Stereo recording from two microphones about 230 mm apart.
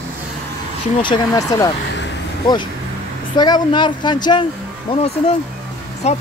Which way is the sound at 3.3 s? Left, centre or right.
Centre.